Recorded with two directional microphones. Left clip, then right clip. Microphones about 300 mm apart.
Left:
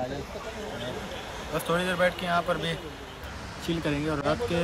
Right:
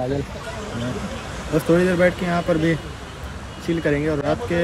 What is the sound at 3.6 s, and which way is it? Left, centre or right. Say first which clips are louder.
Speech: right 8 dB; centre.